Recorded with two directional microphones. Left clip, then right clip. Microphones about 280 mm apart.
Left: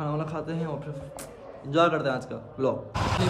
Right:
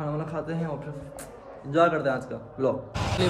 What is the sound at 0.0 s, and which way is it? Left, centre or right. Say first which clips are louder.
A man's voice: even; centre.